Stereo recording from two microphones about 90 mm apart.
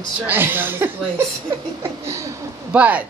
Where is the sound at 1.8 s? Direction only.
35° right (ahead or behind).